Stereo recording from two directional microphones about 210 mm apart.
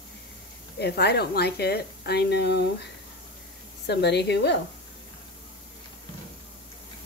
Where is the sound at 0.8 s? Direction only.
50° left (ahead or behind).